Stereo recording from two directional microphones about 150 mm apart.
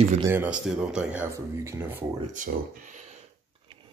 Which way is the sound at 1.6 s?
20° right (ahead or behind).